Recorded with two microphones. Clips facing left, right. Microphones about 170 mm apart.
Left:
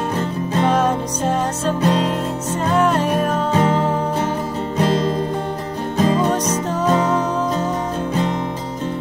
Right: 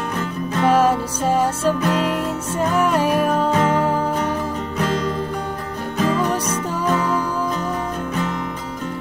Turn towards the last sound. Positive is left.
turn(degrees=25)  # may be behind; listen again after turning